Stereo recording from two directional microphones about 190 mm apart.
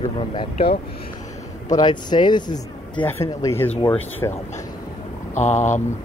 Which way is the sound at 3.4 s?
10° left (ahead or behind).